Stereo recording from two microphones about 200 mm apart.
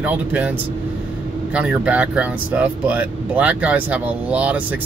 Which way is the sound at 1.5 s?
5° right (ahead or behind).